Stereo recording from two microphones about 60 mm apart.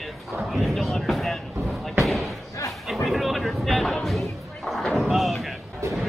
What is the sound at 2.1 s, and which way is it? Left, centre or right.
Slam, centre.